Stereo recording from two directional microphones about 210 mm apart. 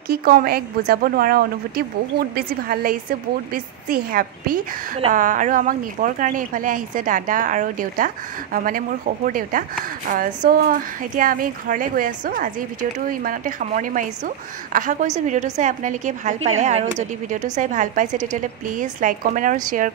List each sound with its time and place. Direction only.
0.1 s a woman's voice: 45° right (ahead or behind)